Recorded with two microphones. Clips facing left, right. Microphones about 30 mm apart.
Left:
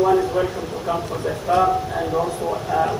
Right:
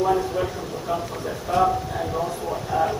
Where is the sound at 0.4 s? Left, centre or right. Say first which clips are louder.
Left 4 dB; centre.